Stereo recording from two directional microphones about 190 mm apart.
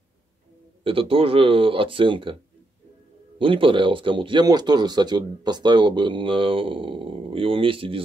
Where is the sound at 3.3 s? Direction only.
30° right (ahead or behind).